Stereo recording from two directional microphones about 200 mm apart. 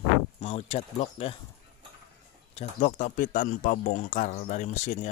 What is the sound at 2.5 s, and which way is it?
Speech, 35° left (ahead or behind).